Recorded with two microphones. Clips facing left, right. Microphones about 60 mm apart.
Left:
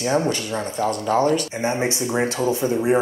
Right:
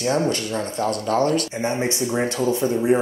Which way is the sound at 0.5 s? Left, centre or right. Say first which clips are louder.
Even; centre.